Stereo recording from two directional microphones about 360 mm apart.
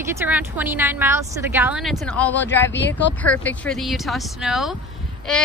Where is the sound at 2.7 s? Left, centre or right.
Left.